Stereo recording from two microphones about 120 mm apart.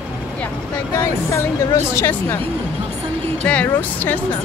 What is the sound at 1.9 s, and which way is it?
Speech, 20° left (ahead or behind).